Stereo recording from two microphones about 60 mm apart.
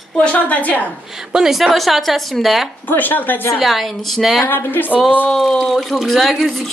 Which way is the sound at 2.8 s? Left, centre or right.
Left.